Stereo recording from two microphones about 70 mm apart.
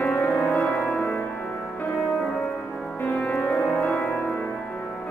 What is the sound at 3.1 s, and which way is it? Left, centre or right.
Music, left.